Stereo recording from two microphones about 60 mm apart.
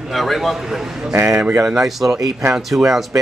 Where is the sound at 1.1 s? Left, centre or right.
Right.